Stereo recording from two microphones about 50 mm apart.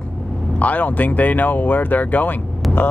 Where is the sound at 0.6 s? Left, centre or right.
Left.